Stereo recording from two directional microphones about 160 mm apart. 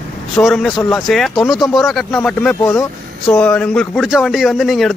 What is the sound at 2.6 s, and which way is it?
Speech, 20° left (ahead or behind).